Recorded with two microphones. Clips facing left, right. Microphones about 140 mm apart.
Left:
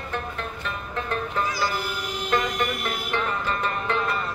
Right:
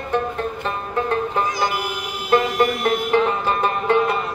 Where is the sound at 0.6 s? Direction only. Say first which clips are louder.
Right 7 dB; 35° right (ahead or behind).